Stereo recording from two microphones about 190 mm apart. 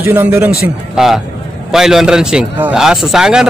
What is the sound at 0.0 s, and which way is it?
A man's voice, 10° right (ahead or behind).